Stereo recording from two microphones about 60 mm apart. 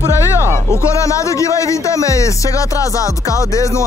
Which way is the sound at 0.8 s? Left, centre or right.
Left.